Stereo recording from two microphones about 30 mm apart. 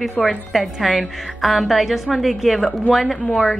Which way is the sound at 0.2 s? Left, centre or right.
Left.